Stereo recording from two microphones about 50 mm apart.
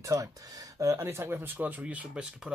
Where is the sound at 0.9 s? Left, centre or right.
Right.